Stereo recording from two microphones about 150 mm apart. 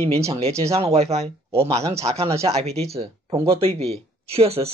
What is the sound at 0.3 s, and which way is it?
Speech, 40° right (ahead or behind).